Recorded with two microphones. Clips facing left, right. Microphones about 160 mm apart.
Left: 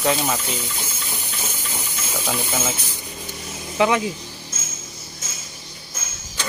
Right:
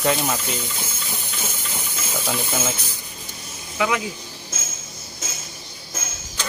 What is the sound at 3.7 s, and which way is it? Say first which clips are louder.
Speech: left 4 dB; 30° left (ahead or behind).